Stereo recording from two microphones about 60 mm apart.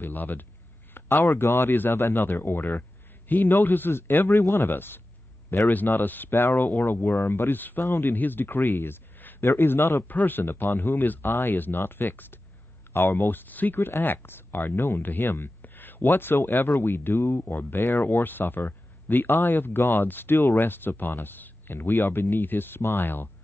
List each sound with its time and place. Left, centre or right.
0.0 s speech: left
0.9 s a sound: left
1.2 s speech: left
4.3 s speech: left
4.6 s speech: left
10.0 s speech: left